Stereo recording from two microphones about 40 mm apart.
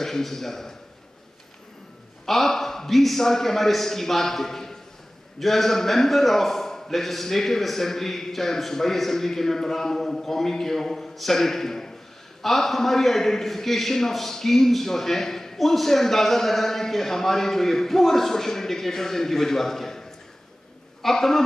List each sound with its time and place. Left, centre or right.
0.0 s a man's voice: centre
2.2 s a man's voice: centre